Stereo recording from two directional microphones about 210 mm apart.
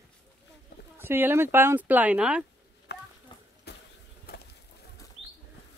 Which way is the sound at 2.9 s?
55° left (ahead or behind).